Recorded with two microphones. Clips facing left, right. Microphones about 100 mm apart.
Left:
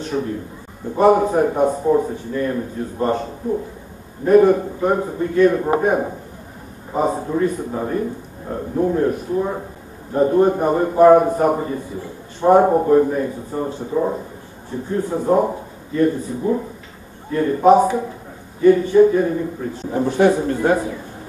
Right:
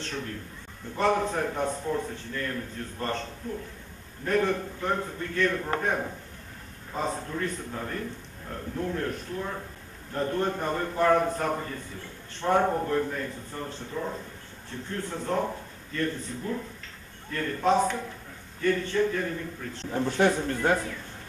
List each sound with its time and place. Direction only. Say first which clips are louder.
0.0 s a man's voice: left 12 dB; 15° left (ahead or behind)
13.9 s speech: left 13 dB; 35° left (ahead or behind)
14.7 s a man's voice: left 12 dB; 15° left (ahead or behind)